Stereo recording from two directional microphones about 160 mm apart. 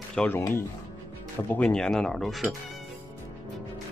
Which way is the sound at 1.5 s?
5° left (ahead or behind).